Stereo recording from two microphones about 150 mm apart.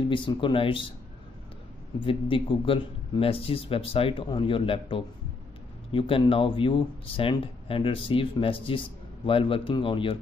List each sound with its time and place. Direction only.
0.1 s speech: 35° left (ahead or behind)
2.0 s speech: 35° left (ahead or behind)